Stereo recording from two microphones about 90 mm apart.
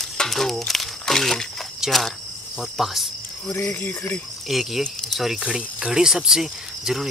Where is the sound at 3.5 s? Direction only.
20° left (ahead or behind).